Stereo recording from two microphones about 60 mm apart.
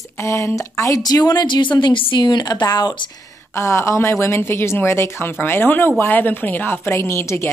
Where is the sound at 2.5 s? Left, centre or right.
Left.